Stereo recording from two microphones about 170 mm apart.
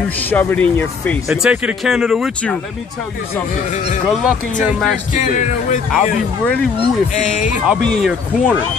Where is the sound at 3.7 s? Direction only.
40° left (ahead or behind).